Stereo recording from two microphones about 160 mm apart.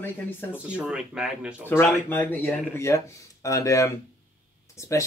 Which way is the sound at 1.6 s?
15° left (ahead or behind).